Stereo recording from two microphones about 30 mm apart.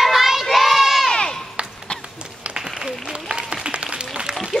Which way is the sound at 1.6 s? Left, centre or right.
Right.